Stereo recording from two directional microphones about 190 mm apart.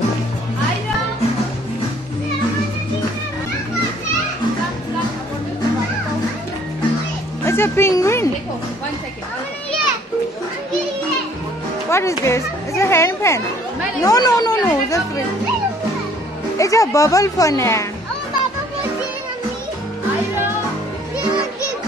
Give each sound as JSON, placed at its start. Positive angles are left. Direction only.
{"t": 7.4, "sound": "music", "side_deg": 10}
{"t": 11.9, "sound": "a child's voice", "side_deg": 15}
{"t": 16.5, "sound": "speech", "side_deg": 15}